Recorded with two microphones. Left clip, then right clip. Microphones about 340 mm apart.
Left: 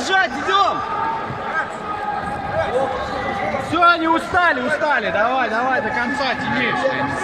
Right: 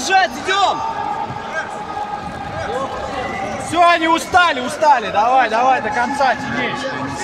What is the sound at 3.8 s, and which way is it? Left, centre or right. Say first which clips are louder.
A man's voice: right 2 dB; right.